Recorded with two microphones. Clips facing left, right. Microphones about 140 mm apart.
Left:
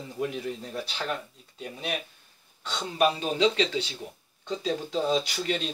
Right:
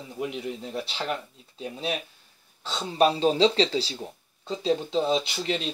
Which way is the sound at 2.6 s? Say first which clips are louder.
Right 3 dB; 30° right (ahead or behind).